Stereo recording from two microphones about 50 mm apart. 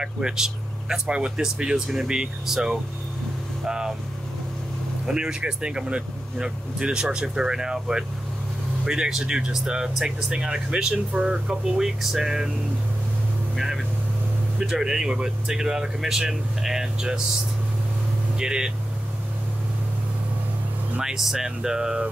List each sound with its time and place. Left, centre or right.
0.0 s speech: centre
5.0 s speech: centre
14.6 s speech: centre
18.4 s speech: centre
21.0 s speech: centre